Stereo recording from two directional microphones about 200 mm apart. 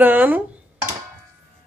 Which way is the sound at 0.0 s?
10° right (ahead or behind).